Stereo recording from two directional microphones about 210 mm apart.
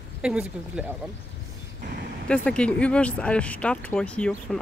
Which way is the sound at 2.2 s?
5° left (ahead or behind).